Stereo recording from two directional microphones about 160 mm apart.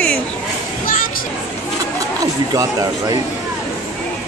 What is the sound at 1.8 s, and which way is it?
Speech, 20° right (ahead or behind).